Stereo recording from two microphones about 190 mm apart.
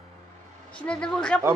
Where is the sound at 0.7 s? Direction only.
5° left (ahead or behind).